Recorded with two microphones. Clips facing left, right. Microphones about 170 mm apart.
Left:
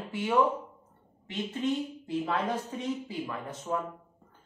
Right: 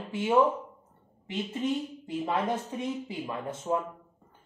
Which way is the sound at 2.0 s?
15° right (ahead or behind).